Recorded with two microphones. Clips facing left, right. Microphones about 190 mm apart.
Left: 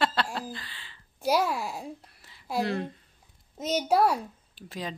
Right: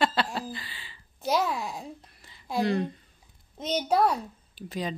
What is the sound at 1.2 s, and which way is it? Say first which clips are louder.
A child's voice: left 1 dB; 10° left (ahead or behind).